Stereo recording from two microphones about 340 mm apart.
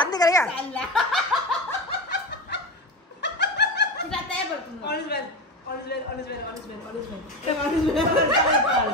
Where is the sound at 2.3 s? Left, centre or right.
Left.